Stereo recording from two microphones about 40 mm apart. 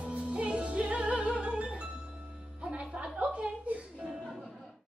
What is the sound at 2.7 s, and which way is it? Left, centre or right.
Music, right.